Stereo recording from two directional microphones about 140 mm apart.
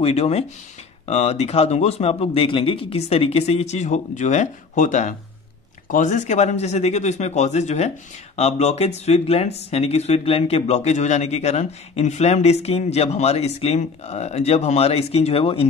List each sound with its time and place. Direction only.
0.0 s speech: 50° left (ahead or behind)